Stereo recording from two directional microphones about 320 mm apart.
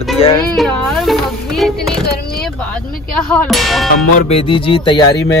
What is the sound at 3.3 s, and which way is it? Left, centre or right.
Music, centre.